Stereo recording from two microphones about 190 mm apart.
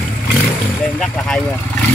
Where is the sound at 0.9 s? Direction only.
5° left (ahead or behind).